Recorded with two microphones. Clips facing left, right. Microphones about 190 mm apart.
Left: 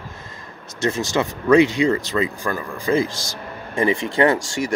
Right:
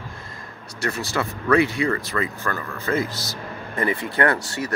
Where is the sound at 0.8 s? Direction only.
20° left (ahead or behind).